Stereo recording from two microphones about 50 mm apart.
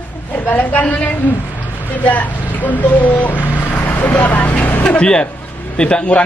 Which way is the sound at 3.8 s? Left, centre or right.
Left.